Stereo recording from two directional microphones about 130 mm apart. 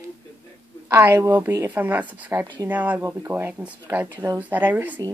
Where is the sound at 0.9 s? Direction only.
15° right (ahead or behind).